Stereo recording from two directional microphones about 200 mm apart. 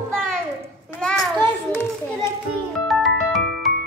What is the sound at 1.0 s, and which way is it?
Children playing, 5° left (ahead or behind).